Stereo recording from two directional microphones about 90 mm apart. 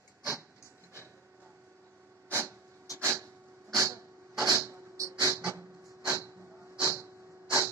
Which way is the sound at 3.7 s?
35° right (ahead or behind).